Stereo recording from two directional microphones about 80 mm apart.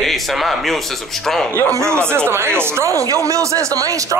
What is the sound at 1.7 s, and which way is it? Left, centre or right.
Speech, right.